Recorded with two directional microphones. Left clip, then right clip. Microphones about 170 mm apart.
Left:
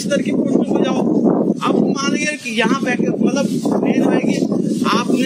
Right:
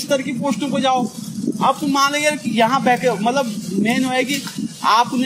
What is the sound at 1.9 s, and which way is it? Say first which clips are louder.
A man's voice: right 3 dB; 25° right (ahead or behind).